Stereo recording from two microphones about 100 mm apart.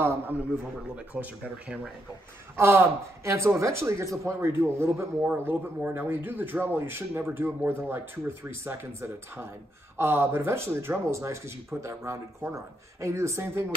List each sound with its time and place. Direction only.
0.0 s speech: 25° right (ahead or behind)
0.6 s speech: 10° right (ahead or behind)
2.5 s speech: 25° right (ahead or behind)